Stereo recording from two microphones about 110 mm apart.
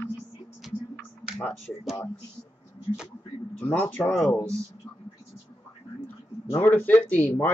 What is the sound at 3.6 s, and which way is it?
Speech, 15° left (ahead or behind).